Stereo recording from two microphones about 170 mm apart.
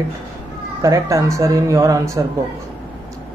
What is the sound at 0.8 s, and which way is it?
Speech, 20° right (ahead or behind).